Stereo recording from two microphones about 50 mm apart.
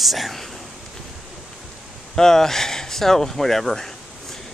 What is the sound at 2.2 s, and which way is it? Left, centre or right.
Speech, centre.